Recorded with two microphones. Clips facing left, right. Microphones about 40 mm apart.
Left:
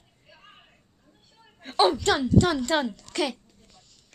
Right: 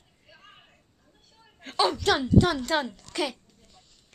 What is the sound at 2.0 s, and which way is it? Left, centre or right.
Speech, centre.